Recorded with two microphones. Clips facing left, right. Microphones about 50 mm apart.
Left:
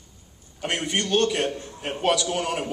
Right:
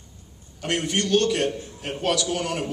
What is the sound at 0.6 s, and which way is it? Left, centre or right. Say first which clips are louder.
A man's voice: right 1 dB; centre.